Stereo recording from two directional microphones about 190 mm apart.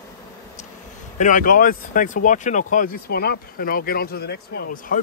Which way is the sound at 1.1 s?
45° left (ahead or behind).